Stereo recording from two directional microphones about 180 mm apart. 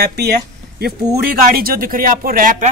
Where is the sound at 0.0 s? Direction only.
65° right (ahead or behind).